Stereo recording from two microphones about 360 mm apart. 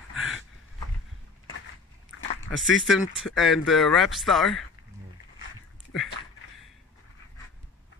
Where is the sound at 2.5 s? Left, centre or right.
Centre.